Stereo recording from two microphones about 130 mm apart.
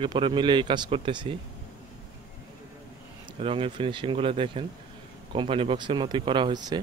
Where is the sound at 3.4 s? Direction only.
45° right (ahead or behind).